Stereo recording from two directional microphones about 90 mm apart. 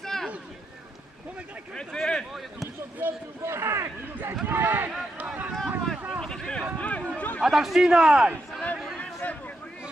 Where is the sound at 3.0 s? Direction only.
25° right (ahead or behind).